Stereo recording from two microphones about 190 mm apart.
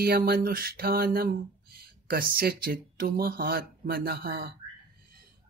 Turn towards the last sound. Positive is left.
turn(degrees=-55)  # may be behind; listen again after turning